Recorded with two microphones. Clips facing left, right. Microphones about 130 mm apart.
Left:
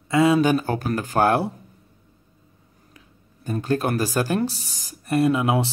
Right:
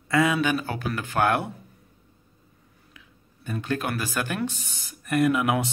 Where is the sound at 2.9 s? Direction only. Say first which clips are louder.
Left 2 dB; 40° left (ahead or behind).